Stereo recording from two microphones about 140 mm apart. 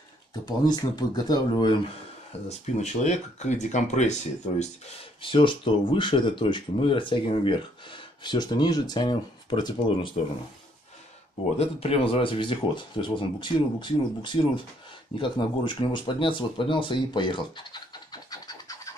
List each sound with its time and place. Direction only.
0.3 s speech: 30° left (ahead or behind)
2.4 s speech: 50° left (ahead or behind)
5.2 s speech: 35° left (ahead or behind)
11.5 s speech: 45° left (ahead or behind); by 18.9 s 25° left (ahead or behind)